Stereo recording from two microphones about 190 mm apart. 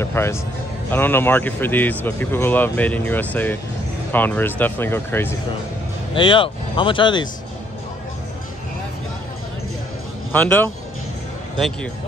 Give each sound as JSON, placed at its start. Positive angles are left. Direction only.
{"t": 0.0, "sound": "speech", "side_deg": 15}
{"t": 6.1, "sound": "speech", "side_deg": 25}
{"t": 10.3, "sound": "speech", "side_deg": 10}